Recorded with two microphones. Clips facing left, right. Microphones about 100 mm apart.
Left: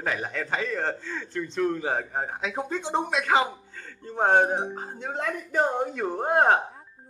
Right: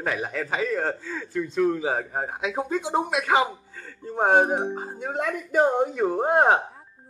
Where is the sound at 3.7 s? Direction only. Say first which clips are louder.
Right 3 dB; 5° right (ahead or behind).